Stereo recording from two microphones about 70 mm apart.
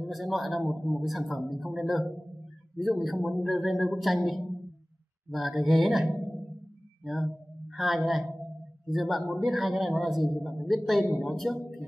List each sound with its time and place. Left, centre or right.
0.0 s a man's voice: centre